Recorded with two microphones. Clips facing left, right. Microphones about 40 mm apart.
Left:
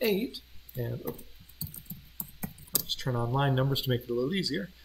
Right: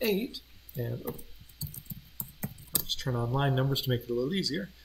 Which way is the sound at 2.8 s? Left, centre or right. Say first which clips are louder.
Left 1 dB; centre.